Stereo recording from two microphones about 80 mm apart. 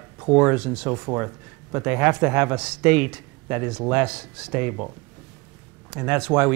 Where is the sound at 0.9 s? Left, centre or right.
Right; by 4.5 s centre.